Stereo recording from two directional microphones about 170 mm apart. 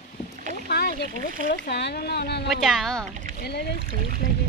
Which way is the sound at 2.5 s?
Centre (ahead or behind).